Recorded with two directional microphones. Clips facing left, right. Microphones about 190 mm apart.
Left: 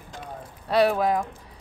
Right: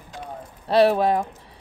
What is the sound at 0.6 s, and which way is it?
Speech, 30° right (ahead or behind).